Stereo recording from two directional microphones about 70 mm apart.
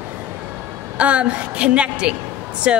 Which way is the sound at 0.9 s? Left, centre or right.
Centre.